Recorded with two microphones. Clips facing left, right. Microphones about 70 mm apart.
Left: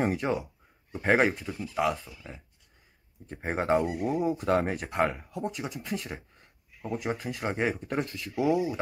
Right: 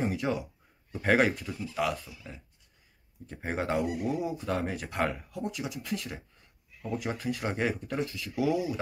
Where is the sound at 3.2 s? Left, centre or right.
Left.